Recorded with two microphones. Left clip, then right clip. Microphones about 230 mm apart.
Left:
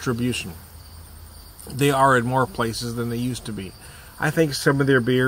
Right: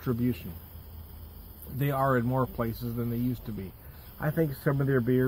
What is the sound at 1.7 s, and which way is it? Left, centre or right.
Speech, centre.